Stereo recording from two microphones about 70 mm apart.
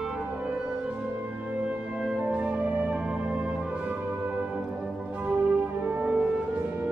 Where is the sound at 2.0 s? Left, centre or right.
Centre.